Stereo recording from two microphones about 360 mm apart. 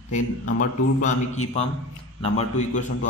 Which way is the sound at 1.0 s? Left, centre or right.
Centre.